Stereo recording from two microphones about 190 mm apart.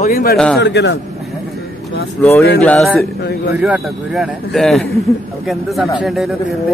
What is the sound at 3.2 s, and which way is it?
Speech, 60° left (ahead or behind).